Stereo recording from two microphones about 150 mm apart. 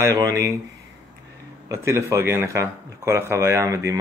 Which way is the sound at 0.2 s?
20° right (ahead or behind).